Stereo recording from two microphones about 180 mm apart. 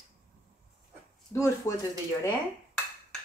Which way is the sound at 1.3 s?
15° left (ahead or behind).